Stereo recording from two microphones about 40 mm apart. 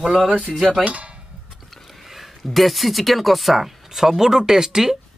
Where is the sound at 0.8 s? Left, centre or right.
Right.